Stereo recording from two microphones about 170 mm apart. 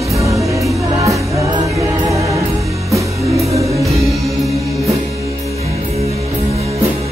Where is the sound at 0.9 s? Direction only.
20° right (ahead or behind).